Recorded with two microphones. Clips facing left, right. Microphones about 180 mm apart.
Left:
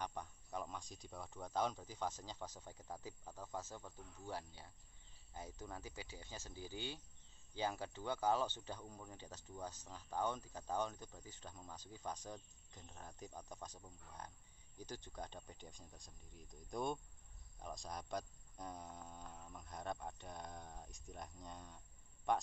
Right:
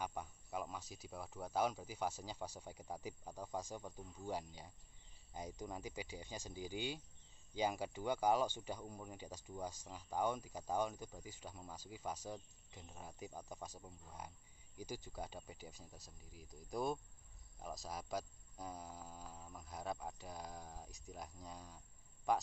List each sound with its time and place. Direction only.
0.0 s speech: 5° right (ahead or behind)